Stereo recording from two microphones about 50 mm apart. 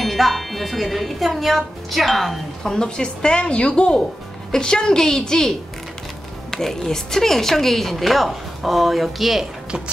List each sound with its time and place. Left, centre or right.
0.0 s speech: centre
2.7 s a woman's voice: centre
6.5 s speech: centre